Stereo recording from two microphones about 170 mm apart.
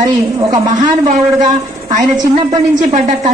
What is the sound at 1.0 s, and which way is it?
A woman's voice, 45° right (ahead or behind).